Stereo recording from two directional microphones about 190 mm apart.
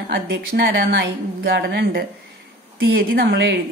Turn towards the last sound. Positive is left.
turn(degrees=-60)  # may be behind; listen again after turning